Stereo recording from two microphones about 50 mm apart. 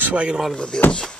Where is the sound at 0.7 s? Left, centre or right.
Centre.